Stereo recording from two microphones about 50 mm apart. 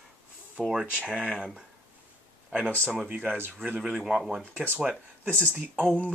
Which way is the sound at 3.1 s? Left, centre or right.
Right.